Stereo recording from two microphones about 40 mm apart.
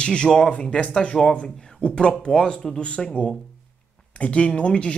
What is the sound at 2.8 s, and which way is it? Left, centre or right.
Speech, left.